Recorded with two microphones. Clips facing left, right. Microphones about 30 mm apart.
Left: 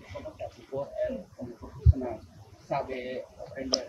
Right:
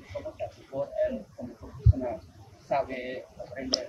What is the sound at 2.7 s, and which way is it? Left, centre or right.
Speech, centre.